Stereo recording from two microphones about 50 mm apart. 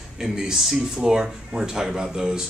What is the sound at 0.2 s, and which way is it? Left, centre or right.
Speech, centre.